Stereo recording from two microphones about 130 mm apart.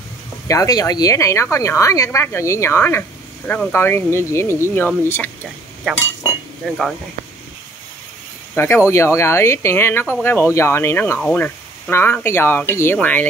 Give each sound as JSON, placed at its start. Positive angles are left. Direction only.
{"t": 0.5, "sound": "speech", "side_deg": 25}
{"t": 6.6, "sound": "speech", "side_deg": 0}
{"t": 8.5, "sound": "speech", "side_deg": 20}